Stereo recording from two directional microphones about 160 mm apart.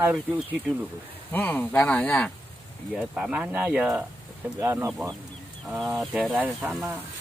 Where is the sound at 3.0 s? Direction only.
10° right (ahead or behind).